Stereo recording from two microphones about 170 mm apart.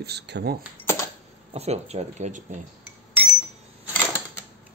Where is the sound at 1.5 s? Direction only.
40° right (ahead or behind).